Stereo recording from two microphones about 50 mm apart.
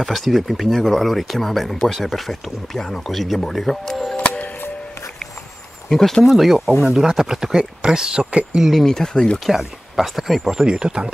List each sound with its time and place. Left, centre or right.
0.0 s speech: centre
4.2 s music: left
5.9 s speech: centre
6.2 s speech: centre
8.8 s speech: centre
9.5 s speech: centre